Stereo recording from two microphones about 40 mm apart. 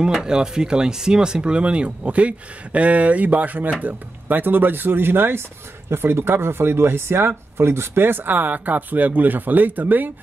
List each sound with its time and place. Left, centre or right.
0.2 s speech: centre; by 5.4 s right
5.9 s speech: right